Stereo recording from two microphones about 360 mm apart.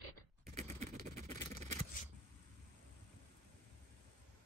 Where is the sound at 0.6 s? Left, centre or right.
Centre.